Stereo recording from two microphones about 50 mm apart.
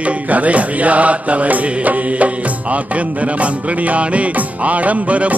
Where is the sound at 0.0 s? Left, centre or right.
Right.